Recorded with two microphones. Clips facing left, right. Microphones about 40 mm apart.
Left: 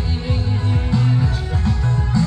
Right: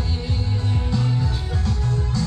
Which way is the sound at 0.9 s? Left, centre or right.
Left.